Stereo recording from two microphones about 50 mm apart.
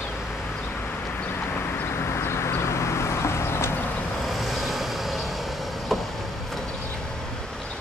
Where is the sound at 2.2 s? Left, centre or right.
Left.